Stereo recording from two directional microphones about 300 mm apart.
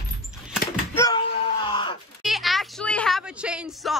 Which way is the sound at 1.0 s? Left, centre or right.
Centre.